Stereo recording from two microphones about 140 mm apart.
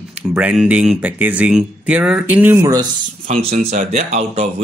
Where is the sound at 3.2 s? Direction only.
65° right (ahead or behind).